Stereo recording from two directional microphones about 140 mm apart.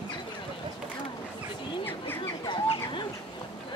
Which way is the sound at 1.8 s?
15° left (ahead or behind).